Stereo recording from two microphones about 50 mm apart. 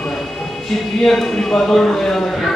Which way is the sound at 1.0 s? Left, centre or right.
Centre.